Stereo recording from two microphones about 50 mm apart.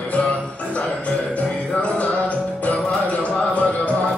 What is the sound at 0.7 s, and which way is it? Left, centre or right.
Music, left.